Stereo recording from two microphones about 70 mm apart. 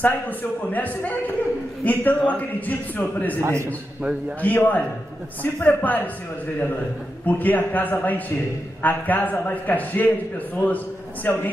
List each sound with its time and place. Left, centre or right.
0.0 s a man's voice: left
3.3 s a man's voice: right
4.4 s a man's voice: left
7.2 s a man's voice: left